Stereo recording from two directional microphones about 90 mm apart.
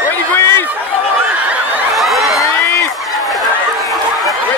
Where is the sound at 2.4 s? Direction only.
35° left (ahead or behind).